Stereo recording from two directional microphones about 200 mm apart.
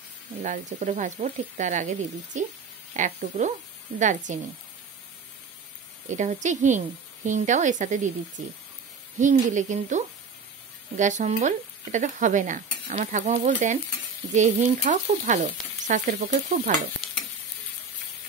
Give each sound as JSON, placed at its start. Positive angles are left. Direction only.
{"t": 0.4, "sound": "stir", "side_deg": -40}
{"t": 6.0, "sound": "stir", "side_deg": -35}
{"t": 9.2, "sound": "stir", "side_deg": -40}